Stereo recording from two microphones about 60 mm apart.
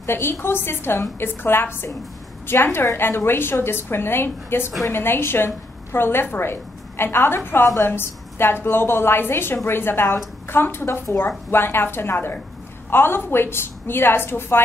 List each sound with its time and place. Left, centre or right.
0.0 s a woman's voice: left